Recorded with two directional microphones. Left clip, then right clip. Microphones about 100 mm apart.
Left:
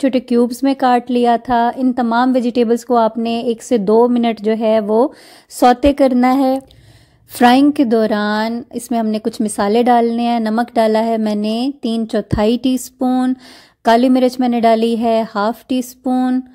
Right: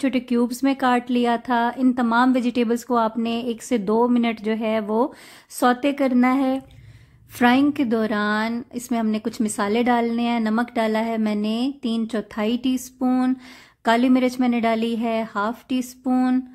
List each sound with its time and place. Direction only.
0.0 s a woman's voice: 50° left (ahead or behind)
5.6 s a woman's voice: 65° left (ahead or behind)
7.3 s a woman's voice: 80° left
7.7 s a woman's voice: 50° left (ahead or behind); by 12.8 s 65° left (ahead or behind)
13.0 s a woman's voice: 45° left (ahead or behind)
16.0 s a sound: 35° left (ahead or behind)